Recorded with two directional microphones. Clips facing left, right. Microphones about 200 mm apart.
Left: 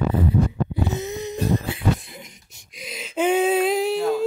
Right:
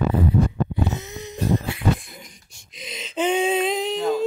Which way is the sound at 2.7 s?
10° left (ahead or behind).